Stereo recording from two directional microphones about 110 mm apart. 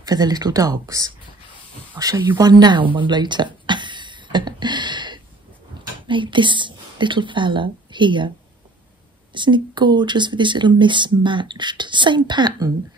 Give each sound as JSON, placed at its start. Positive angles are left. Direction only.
{"t": 0.0, "sound": "speech", "side_deg": -35}
{"t": 2.2, "sound": "a sound", "side_deg": -40}
{"t": 6.0, "sound": "a woman's voice", "side_deg": -50}
{"t": 9.3, "sound": "speech", "side_deg": -45}